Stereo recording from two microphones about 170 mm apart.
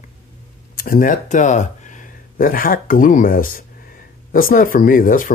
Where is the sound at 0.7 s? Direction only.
55° left (ahead or behind).